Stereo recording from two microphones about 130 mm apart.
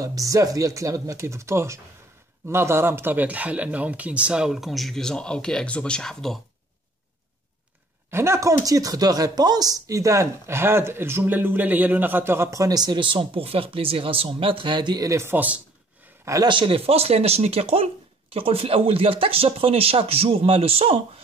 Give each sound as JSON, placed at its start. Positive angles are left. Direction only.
{"t": 0.0, "sound": "speech", "side_deg": -25}
{"t": 8.1, "sound": "speech", "side_deg": -20}
{"t": 15.0, "sound": "speech", "side_deg": -20}
{"t": 16.4, "sound": "speech", "side_deg": -40}